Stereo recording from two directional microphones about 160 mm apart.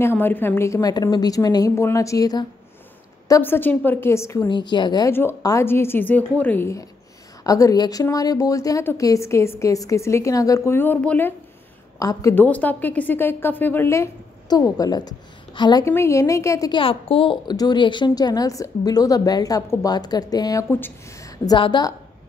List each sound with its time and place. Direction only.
0.0 s a woman's voice: 15° left (ahead or behind)
4.5 s a woman's voice: 30° left (ahead or behind)
15.8 s a woman's voice: 15° left (ahead or behind)